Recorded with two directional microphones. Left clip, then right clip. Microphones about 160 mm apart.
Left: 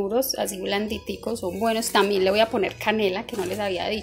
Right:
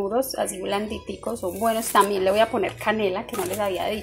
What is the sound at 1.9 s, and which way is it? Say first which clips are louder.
Speech: right 1 dB; 70° left (ahead or behind).